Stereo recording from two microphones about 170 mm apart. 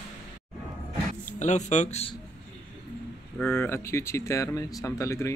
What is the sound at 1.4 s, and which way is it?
Speech, 45° left (ahead or behind).